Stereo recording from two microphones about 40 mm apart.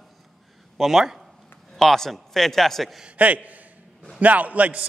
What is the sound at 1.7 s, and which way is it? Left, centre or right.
A man's voice, centre.